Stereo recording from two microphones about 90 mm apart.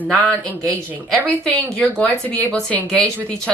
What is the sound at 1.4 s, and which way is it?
A woman's voice, 10° left (ahead or behind).